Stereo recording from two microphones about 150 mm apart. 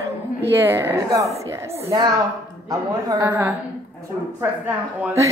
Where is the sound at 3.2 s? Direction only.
10° right (ahead or behind).